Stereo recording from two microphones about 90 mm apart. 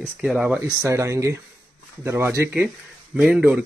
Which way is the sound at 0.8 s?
35° right (ahead or behind).